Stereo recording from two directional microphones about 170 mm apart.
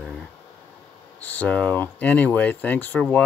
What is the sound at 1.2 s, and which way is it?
Speech, 10° left (ahead or behind).